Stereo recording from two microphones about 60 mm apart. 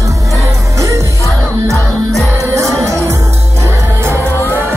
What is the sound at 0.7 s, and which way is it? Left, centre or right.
Music, right.